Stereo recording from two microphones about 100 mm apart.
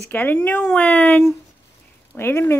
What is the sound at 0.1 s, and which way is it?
Speech, 20° left (ahead or behind).